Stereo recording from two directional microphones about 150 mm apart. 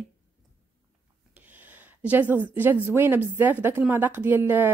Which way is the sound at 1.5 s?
10° right (ahead or behind).